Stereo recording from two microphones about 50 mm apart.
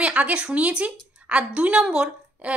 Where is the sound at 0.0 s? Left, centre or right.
Right.